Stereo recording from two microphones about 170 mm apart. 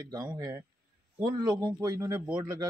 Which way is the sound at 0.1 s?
20° right (ahead or behind).